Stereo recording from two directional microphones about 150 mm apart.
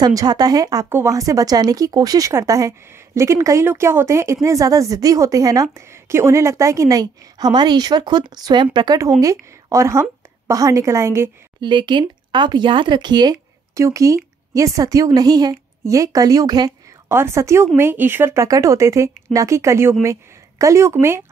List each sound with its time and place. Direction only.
0.0 s a woman's voice: 25° right (ahead or behind)
11.6 s a woman's voice: 30° right (ahead or behind)